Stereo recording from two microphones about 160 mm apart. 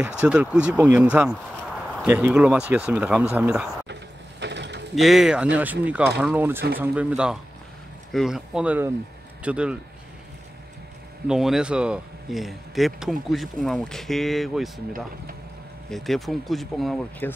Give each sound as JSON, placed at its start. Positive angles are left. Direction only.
{"t": 0.0, "sound": "speech", "side_deg": -10}
{"t": 3.9, "sound": "mechanisms", "side_deg": -90}
{"t": 4.9, "sound": "speech", "side_deg": 0}
{"t": 11.2, "sound": "speech", "side_deg": -5}
{"t": 15.9, "sound": "speech", "side_deg": 0}
{"t": 17.2, "sound": "speech", "side_deg": 10}